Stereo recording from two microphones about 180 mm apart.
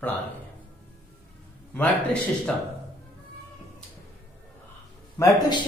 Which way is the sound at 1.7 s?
5° left (ahead or behind).